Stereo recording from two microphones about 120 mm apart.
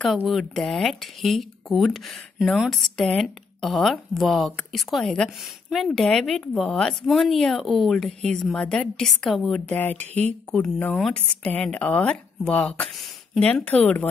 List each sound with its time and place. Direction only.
0.3 s speech: 5° left (ahead or behind)
9.8 s speech: 15° left (ahead or behind)
11.0 s speech: 5° left (ahead or behind)